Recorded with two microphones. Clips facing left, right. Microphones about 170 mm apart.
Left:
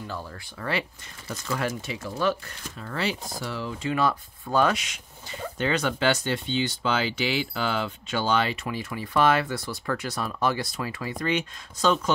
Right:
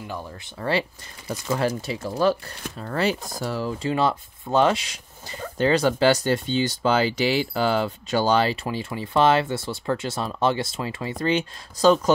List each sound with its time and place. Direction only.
0.0 s speech: 15° right (ahead or behind)
1.2 s speech: 15° right (ahead or behind)
1.6 s speech: 35° right (ahead or behind)
3.9 s speech: 25° right (ahead or behind)